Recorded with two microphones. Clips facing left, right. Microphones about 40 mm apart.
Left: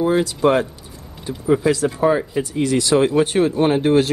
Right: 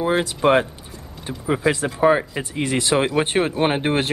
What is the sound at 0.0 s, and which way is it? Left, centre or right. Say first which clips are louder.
Speech: left 2 dB; right.